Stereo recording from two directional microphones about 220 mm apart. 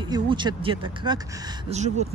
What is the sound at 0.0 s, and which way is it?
Speech, 20° right (ahead or behind).